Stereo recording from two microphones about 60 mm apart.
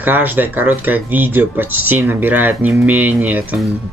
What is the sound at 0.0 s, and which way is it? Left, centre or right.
Speech, right.